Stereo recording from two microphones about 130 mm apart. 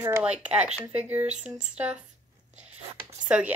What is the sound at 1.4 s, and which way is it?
Speech, 10° right (ahead or behind).